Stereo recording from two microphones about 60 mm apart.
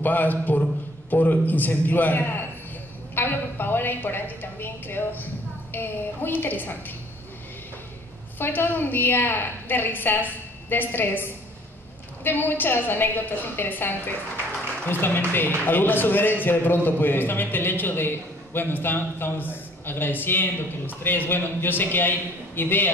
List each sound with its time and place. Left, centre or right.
0.0 s a man's voice: left
8.4 s a man's voice: left